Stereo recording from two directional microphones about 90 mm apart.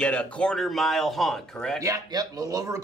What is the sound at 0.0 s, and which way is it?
Speech, 10° left (ahead or behind).